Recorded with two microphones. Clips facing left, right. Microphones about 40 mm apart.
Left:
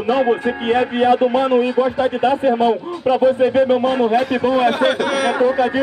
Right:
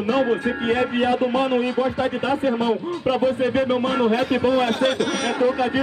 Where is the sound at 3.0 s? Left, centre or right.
Centre.